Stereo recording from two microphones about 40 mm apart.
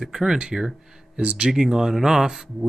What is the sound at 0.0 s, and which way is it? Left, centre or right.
Speech, centre.